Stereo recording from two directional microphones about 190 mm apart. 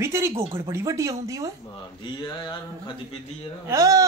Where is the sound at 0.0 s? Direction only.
15° right (ahead or behind).